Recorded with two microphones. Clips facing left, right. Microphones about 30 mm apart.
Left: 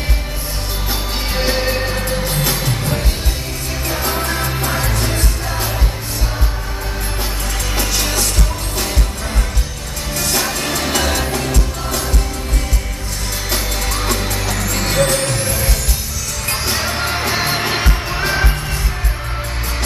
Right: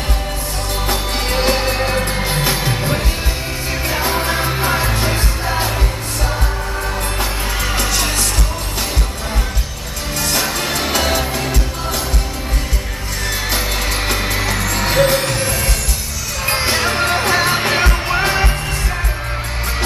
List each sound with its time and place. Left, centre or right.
1.5 s music: centre
2.0 s music: right
3.9 s music: right
4.2 s music: right
7.7 s music: centre
10.1 s music: centre
14.0 s music: centre
16.7 s music: right